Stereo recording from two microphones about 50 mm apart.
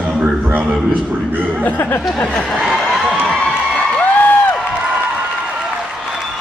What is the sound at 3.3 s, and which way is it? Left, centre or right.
Crowd, left.